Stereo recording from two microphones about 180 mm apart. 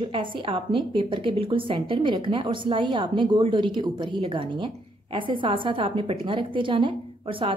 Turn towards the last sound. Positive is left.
turn(degrees=-30)  # may be behind; listen again after turning